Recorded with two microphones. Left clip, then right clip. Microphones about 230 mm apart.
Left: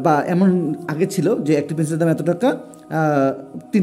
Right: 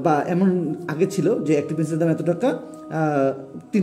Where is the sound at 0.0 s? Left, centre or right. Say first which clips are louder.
Left 3 dB; centre.